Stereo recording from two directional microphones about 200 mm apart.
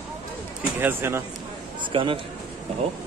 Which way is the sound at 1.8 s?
25° right (ahead or behind).